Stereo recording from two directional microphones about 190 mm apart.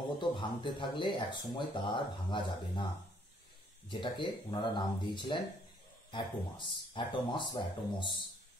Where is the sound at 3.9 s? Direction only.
25° left (ahead or behind).